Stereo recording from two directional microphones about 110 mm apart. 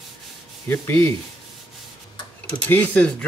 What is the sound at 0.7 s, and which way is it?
Sanding, 20° left (ahead or behind).